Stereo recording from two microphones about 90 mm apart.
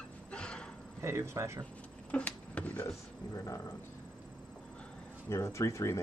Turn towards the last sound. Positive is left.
turn(degrees=35)  # may be behind; listen again after turning